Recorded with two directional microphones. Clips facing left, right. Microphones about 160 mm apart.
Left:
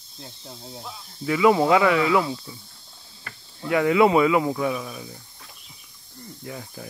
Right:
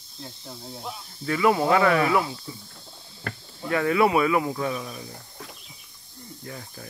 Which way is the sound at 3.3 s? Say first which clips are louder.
Right 9 dB; 60° right (ahead or behind).